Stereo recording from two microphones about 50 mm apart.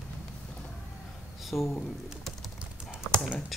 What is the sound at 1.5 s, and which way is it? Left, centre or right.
Speech, left.